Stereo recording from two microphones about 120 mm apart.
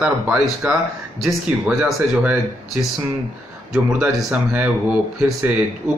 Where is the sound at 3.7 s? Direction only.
5° right (ahead or behind).